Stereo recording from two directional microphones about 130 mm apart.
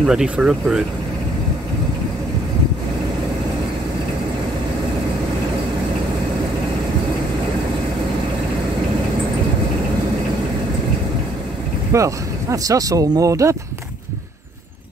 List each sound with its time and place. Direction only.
0.0 s speech: 5° right (ahead or behind)
11.9 s speech: 25° right (ahead or behind)